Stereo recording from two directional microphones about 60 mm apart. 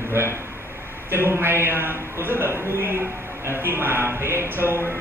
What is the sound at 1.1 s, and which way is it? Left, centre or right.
A man's voice, right.